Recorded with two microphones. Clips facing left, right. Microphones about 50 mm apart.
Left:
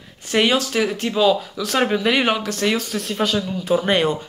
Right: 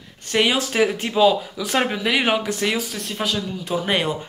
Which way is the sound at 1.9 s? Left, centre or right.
Centre.